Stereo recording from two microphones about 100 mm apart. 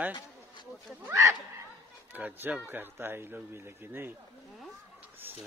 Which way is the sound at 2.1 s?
15° right (ahead or behind).